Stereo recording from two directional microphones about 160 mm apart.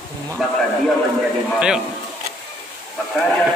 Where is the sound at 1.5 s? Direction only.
5° right (ahead or behind).